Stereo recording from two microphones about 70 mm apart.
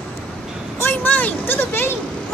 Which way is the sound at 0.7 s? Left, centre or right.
Left.